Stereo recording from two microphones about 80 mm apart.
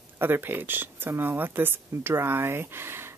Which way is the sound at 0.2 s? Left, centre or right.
Right.